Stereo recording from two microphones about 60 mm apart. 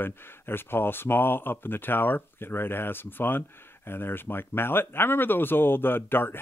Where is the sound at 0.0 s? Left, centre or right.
Left.